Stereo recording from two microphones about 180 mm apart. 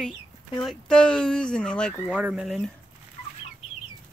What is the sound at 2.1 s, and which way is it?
Speech, 5° right (ahead or behind).